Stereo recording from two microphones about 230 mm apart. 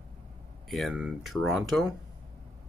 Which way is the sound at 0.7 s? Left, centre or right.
Centre.